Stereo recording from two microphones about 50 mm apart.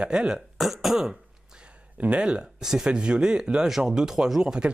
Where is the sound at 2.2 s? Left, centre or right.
Centre.